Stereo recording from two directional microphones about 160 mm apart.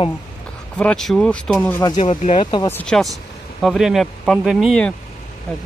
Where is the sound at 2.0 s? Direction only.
45° left (ahead or behind).